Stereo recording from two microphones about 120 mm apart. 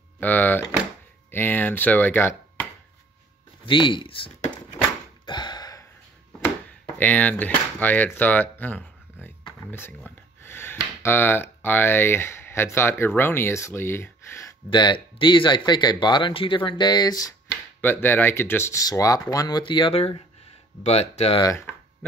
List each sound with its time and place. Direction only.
0.2 s speech: 15° left (ahead or behind)
3.6 s speech: 40° left (ahead or behind)
5.2 s a sound: 40° left (ahead or behind)
7.0 s speech: 10° left (ahead or behind)
9.7 s a sound: 20° left (ahead or behind)
10.8 s speech: 20° left (ahead or behind)
14.7 s speech: 40° left (ahead or behind)
17.8 s speech: 15° left (ahead or behind); by 21.4 s 60° left (ahead or behind)